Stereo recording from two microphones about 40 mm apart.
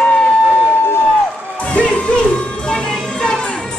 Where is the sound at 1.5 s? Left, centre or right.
Left.